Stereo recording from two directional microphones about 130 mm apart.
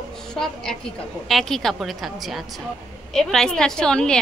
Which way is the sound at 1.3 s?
Centre (ahead or behind).